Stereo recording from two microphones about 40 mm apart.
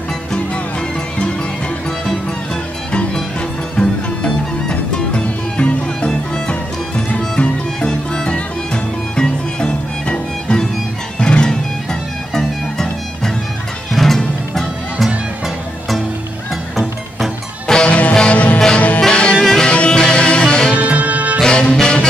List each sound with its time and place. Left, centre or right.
3.7 s music: left
7.3 s music: left
7.9 s music: centre
17.8 s music: left
18.9 s music: centre
19.7 s music: left
20.7 s music: right
21.5 s music: left